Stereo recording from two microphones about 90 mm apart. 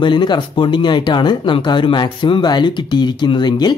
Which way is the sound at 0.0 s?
60° left (ahead or behind).